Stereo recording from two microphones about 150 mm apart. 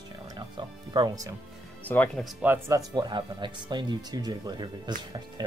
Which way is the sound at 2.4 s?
20° right (ahead or behind).